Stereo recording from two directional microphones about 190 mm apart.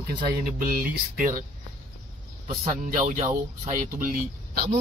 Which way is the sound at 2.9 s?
40° right (ahead or behind).